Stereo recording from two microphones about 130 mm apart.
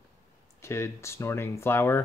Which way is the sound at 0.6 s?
20° left (ahead or behind).